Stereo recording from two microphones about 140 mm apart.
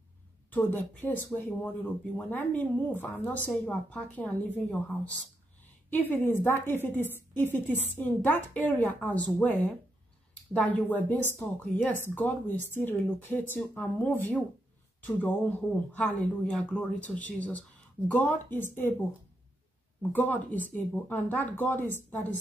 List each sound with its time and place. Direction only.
0.5 s speech: 15° left (ahead or behind)